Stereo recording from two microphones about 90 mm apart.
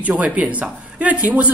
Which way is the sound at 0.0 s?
15° right (ahead or behind).